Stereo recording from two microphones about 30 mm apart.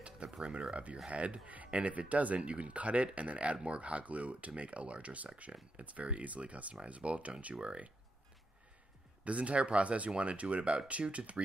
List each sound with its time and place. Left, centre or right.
0.4 s speech: right
5.4 s speech: right
6.0 s speech: right
9.2 s speech: right